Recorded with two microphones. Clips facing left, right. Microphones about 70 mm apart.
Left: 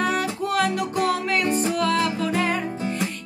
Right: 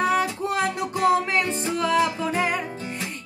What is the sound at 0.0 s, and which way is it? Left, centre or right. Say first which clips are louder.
Music: right 1 dB; right.